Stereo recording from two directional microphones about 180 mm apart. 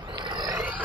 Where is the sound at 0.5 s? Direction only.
10° right (ahead or behind).